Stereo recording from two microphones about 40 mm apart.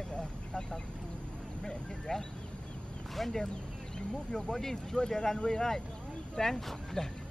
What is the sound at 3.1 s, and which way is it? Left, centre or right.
Speech, centre.